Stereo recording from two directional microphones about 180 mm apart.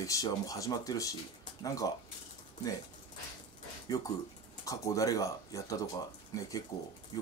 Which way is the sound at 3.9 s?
20° left (ahead or behind).